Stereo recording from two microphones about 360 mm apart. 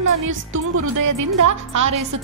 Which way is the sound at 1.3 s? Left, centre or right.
Right.